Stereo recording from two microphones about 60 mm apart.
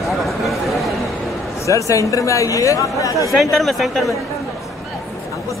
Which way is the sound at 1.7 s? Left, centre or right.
Left.